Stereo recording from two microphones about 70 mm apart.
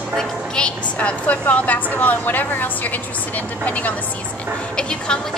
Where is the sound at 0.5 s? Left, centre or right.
Centre.